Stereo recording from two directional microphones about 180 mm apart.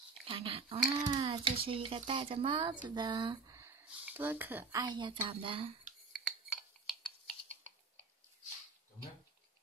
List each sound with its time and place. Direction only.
0.3 s speech: 30° right (ahead or behind)
6.1 s cutlery: centre (ahead or behind)